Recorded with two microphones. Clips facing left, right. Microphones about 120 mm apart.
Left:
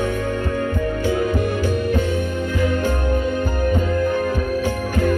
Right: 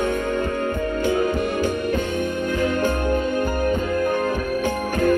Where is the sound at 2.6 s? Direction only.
55° right (ahead or behind).